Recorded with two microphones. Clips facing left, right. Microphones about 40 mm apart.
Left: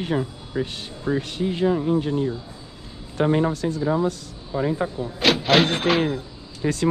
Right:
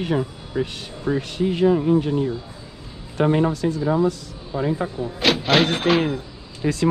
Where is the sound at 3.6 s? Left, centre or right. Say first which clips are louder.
Right 2 dB; right.